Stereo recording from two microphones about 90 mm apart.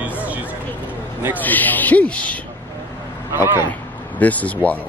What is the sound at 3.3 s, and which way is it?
Speech, 25° right (ahead or behind).